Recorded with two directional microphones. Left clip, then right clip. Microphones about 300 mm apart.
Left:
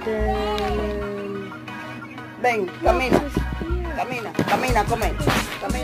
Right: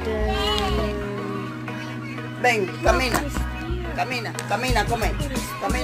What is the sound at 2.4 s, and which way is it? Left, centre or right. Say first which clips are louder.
Speech: even; centre.